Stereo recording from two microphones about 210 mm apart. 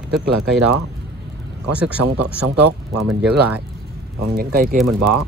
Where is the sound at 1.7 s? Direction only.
5° right (ahead or behind).